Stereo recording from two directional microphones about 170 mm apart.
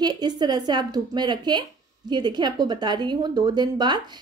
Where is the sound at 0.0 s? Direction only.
25° right (ahead or behind).